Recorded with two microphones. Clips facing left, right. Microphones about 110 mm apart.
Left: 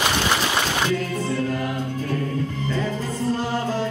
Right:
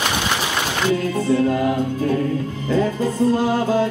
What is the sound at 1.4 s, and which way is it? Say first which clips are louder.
Music: right 7 dB; 25° right (ahead or behind).